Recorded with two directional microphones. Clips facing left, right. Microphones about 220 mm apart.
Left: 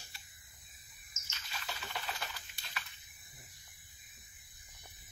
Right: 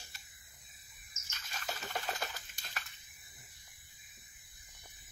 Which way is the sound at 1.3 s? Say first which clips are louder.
Right 3 dB; 45° right (ahead or behind).